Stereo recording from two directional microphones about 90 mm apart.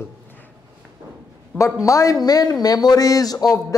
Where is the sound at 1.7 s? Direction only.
40° left (ahead or behind).